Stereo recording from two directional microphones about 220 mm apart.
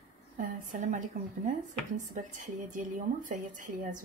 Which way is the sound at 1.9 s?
35° right (ahead or behind).